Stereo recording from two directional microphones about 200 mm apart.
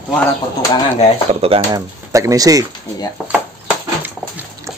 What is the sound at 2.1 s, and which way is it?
Speech, 15° right (ahead or behind).